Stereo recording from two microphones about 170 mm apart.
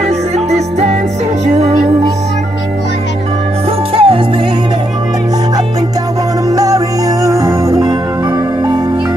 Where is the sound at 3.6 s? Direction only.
35° right (ahead or behind); by 8.8 s 15° right (ahead or behind).